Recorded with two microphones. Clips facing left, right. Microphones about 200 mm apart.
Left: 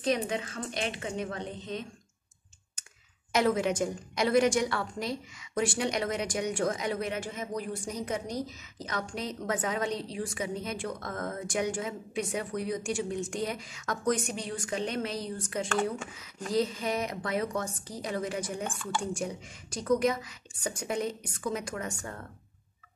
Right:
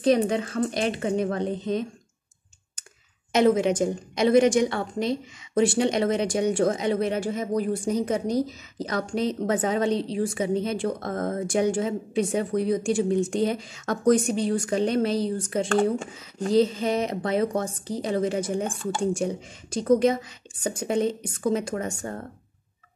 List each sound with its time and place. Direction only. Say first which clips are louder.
0.3 s a woman's voice: right 9 dB; 35° right (ahead or behind)
3.3 s a woman's voice: right 6 dB; 20° right (ahead or behind)